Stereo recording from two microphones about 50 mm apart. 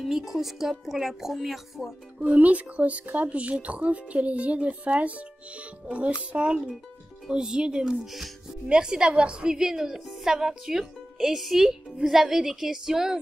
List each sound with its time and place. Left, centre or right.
0.0 s speech: centre
2.1 s a child's voice: right; by 13.2 s centre